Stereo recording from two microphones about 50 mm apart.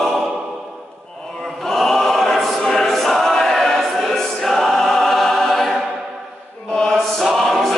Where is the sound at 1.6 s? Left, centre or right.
Centre.